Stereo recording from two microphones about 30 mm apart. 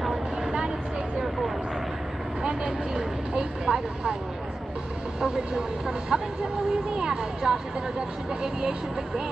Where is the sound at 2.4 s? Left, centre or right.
Right.